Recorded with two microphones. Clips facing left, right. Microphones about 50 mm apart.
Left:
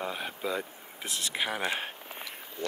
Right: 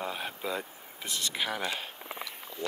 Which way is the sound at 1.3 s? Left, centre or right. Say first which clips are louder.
Left 2 dB; centre.